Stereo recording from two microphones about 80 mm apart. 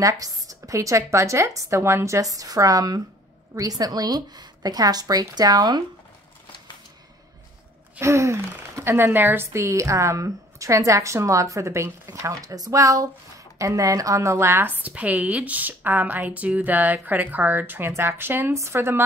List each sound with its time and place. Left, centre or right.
0.0 s a woman's voice: right
8.0 s speech: right
14.8 s speech: centre